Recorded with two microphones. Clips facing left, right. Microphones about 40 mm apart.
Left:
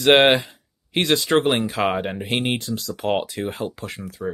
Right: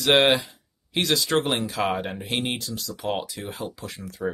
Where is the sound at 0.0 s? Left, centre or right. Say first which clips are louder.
Left 4 dB; left.